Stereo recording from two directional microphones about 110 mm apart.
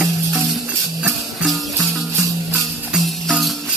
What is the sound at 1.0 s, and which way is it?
Music, 5° right (ahead or behind).